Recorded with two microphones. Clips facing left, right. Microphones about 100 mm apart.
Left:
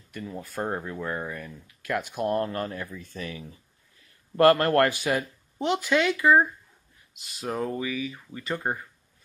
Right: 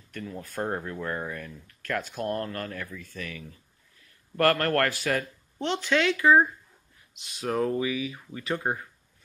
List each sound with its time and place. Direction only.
0.1 s speech: 10° left (ahead or behind)
7.8 s speech: 10° right (ahead or behind)